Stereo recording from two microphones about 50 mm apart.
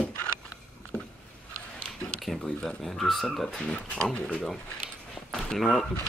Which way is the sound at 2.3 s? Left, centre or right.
Centre.